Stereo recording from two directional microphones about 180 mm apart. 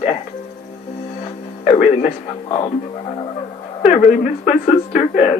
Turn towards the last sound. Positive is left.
turn(degrees=40)  # may be behind; listen again after turning